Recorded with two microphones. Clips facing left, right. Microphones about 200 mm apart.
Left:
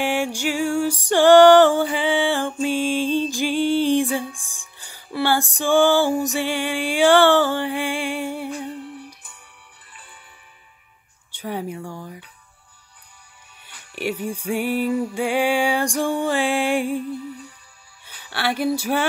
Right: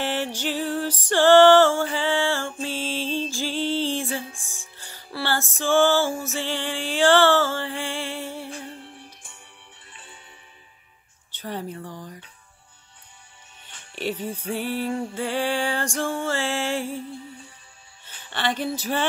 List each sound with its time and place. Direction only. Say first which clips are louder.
0.0 s music: left 4 dB; 10° left (ahead or behind)
11.3 s music: left 4 dB; 10° left (ahead or behind)
13.7 s speech: left 2 dB; 10° left (ahead or behind)
14.5 s music: left 5 dB; 15° left (ahead or behind)
18.0 s a sound: left 2 dB; 10° left (ahead or behind)
18.8 s music: left 4 dB; 10° left (ahead or behind)